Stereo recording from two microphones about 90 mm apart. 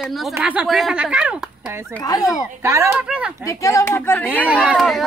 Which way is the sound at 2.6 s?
35° right (ahead or behind).